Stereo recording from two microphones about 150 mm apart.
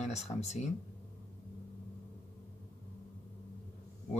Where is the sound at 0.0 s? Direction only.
45° left (ahead or behind).